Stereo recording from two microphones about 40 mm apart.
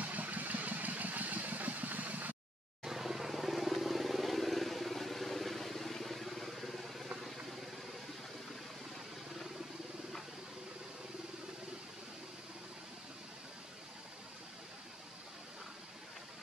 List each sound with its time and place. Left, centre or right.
0.0 s vehicle: right
2.8 s vehicle: centre